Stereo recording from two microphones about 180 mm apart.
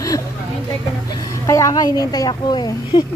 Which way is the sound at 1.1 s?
20° left (ahead or behind).